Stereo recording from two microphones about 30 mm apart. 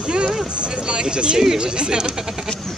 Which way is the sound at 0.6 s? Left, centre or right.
Right.